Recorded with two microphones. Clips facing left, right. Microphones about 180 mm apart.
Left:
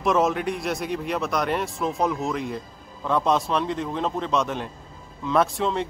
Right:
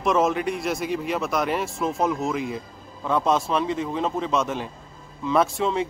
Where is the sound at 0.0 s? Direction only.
Centre (ahead or behind).